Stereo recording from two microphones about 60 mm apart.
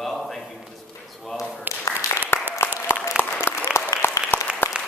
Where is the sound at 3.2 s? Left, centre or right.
Centre.